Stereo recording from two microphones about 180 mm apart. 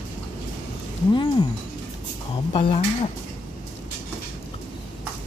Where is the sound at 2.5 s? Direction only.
30° left (ahead or behind).